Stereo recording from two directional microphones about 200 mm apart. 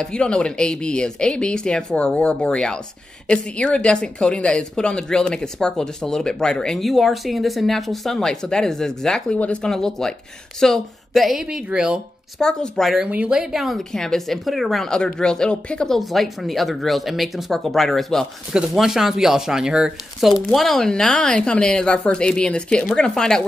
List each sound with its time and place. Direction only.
0.0 s a woman's voice: 5° left (ahead or behind)